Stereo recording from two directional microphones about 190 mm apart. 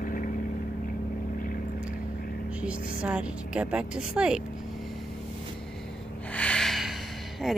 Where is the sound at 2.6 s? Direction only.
5° right (ahead or behind).